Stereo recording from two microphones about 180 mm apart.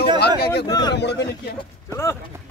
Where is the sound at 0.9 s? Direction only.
70° left (ahead or behind).